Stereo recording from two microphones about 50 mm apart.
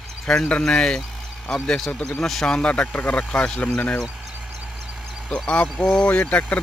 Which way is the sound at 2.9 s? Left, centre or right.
Left.